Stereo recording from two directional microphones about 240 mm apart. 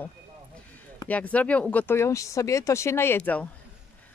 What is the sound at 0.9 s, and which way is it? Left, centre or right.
Speech, centre.